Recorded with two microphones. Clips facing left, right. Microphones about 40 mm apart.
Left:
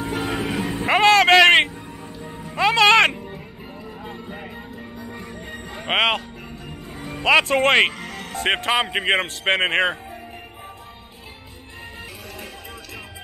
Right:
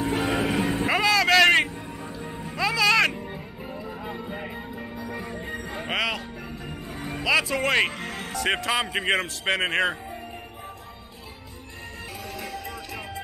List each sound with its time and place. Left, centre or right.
0.0 s music: centre
0.8 s vehicle: left
2.1 s music: centre
2.5 s music: left
4.0 s music: centre
5.1 s music: right
5.5 s music: centre
5.9 s music: left
6.9 s music: centre
7.2 s speech: left
8.0 s music: centre
8.4 s speech: left